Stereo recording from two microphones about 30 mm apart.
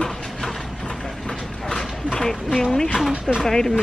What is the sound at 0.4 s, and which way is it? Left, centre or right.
Mechanisms, centre.